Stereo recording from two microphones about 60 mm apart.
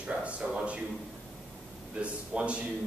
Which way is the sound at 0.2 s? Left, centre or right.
Centre.